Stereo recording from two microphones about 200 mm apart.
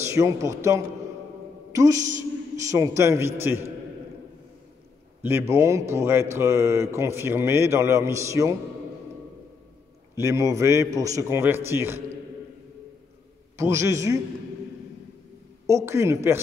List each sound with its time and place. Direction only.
0.1 s a man's voice: 15° right (ahead or behind)
2.0 s a woman's voice: 40° right (ahead or behind)
2.7 s a man's voice: 15° right (ahead or behind)
5.2 s a man's voice: 10° right (ahead or behind)
10.1 s a man's voice: 15° right (ahead or behind)
13.6 s a man's voice: 15° right (ahead or behind)
15.6 s a man's voice: 15° right (ahead or behind)